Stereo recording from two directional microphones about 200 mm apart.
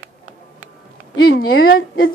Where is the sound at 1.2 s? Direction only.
50° left (ahead or behind).